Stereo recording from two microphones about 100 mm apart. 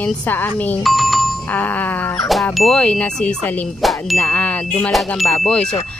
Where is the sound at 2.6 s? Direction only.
5° left (ahead or behind).